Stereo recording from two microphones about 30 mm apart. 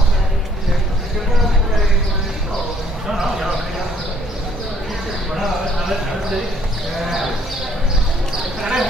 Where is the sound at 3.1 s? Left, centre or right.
Centre.